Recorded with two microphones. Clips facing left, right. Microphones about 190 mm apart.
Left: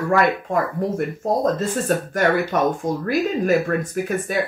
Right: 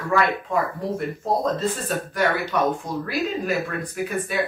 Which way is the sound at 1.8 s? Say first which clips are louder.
Left 7 dB; 50° left (ahead or behind).